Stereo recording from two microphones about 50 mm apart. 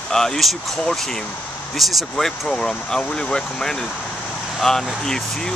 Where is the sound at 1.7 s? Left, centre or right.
Centre.